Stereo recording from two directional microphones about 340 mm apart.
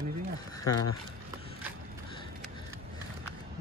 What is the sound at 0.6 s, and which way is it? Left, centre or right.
Speech, left.